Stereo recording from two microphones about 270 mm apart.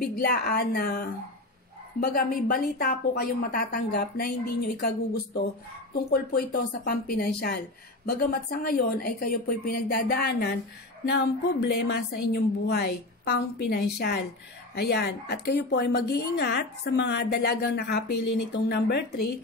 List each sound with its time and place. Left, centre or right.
0.0 s a woman's voice: left
18.1 s speech: left
18.5 s a woman's voice: left